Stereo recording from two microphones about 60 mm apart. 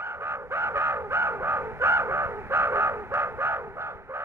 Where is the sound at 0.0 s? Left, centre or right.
Right.